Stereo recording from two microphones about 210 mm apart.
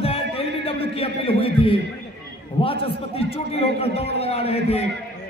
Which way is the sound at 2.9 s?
25° left (ahead or behind).